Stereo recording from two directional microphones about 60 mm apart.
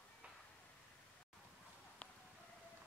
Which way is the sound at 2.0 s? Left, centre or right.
Centre.